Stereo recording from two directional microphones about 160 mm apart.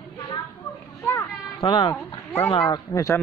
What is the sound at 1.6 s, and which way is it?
Speech, 30° left (ahead or behind).